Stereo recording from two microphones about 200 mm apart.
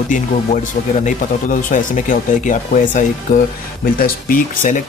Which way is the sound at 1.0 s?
40° left (ahead or behind).